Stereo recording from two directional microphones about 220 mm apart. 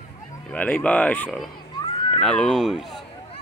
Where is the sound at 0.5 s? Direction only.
5° left (ahead or behind).